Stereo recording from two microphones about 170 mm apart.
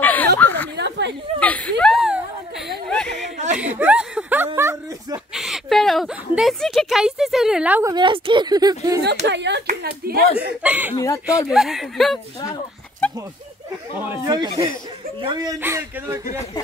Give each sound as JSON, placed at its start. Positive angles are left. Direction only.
{"t": 0.0, "sound": "chuckle", "side_deg": 10}
{"t": 0.4, "sound": "a sound", "side_deg": 10}
{"t": 0.7, "sound": "a sound", "side_deg": -90}
{"t": 1.4, "sound": "a sound", "side_deg": 10}
{"t": 3.5, "sound": "a sound", "side_deg": -10}
{"t": 4.6, "sound": "speech", "side_deg": -15}
{"t": 5.3, "sound": "a woman's voice", "side_deg": 0}
{"t": 7.9, "sound": "speech", "side_deg": -30}
{"t": 9.2, "sound": "speech", "side_deg": -90}
{"t": 9.7, "sound": "speech", "side_deg": -60}
{"t": 10.6, "sound": "speech", "side_deg": -10}
{"t": 14.2, "sound": "speech", "side_deg": -20}